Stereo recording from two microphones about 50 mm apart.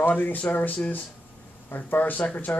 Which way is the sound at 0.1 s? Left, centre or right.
Left.